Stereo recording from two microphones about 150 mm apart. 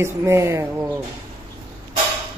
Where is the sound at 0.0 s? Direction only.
20° right (ahead or behind).